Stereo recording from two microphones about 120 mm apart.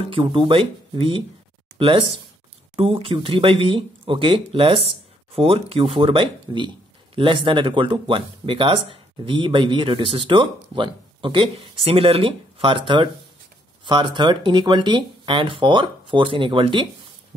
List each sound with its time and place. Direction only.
0.2 s speech: 45° right (ahead or behind)